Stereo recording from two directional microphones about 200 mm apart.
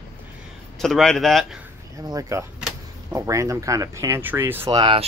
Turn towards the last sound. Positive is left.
turn(degrees=-25)  # may be behind; listen again after turning